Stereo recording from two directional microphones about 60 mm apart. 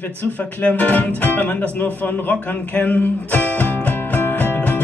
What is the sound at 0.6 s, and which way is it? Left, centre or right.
Speech, left.